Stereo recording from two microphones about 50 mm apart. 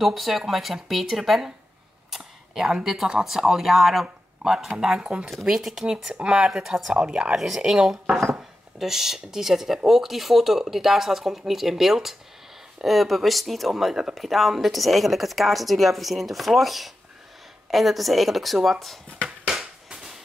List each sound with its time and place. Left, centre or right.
0.0 s speech: centre
2.0 s a sound: centre
3.1 s speech: centre
6.5 s speech: centre
6.9 s speech: centre
7.3 s speech: centre